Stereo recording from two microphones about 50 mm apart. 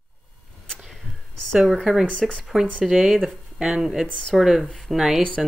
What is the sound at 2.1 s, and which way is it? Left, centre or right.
Speech, centre.